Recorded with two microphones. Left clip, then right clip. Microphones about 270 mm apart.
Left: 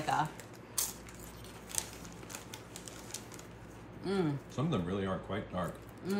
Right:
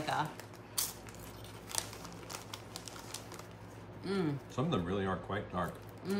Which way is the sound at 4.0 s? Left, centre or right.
Centre.